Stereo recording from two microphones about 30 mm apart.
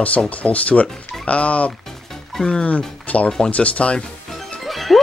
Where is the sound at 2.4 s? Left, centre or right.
Left.